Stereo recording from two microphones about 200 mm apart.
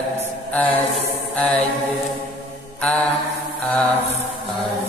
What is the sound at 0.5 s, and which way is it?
Speech, 5° left (ahead or behind).